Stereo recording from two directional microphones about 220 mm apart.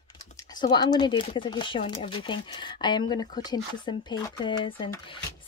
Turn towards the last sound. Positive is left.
turn(degrees=20)  # may be behind; listen again after turning